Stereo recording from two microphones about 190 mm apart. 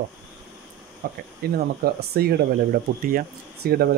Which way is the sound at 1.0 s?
50° right (ahead or behind).